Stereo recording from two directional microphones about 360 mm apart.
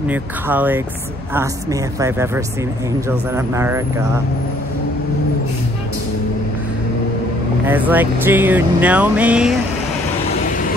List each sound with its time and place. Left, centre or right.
0.1 s speech: centre
7.6 s speech: centre
10.4 s vehicle: left